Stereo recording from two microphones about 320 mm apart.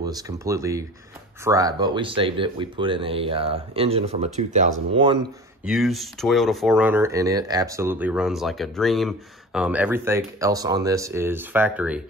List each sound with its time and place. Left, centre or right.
0.0 s speech: centre
5.7 s speech: centre